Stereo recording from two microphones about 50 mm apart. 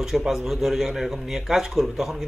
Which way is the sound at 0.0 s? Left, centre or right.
Centre.